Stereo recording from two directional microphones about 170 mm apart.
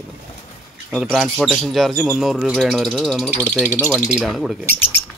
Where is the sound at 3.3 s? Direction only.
10° right (ahead or behind).